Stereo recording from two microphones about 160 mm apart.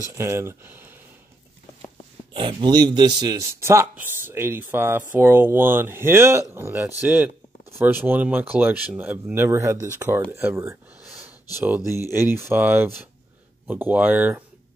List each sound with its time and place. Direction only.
0.1 s speech: 15° right (ahead or behind)
2.3 s speech: 30° right (ahead or behind); by 14.4 s 10° right (ahead or behind)